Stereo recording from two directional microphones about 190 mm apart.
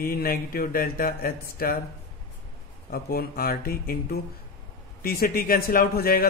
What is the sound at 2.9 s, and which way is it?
A man's voice, 50° left (ahead or behind).